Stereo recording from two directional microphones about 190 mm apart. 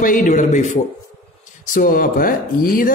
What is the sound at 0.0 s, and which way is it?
A man's voice, 45° left (ahead or behind).